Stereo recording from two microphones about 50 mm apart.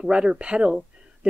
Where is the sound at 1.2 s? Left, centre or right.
Right.